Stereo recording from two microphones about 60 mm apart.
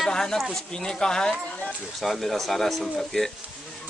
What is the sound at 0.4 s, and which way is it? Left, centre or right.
Speech, centre.